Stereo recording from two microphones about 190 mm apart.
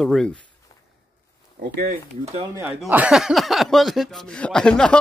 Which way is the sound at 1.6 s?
50° right (ahead or behind).